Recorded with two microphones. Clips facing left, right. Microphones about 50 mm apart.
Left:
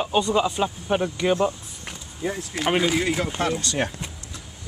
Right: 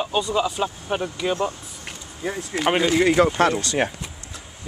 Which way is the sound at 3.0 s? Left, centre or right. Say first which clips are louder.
Right 7 dB; right.